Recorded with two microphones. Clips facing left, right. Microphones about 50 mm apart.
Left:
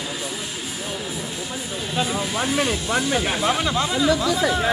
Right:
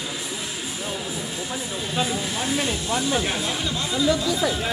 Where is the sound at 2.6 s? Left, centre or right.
Left.